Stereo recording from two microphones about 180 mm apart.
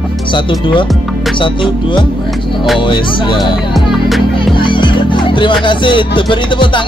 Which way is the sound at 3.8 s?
Centre (ahead or behind).